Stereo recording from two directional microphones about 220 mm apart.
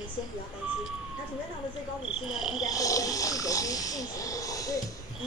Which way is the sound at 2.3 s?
Centre (ahead or behind).